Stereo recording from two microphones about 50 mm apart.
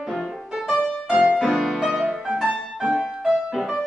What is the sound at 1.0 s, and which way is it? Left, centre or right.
Music, centre.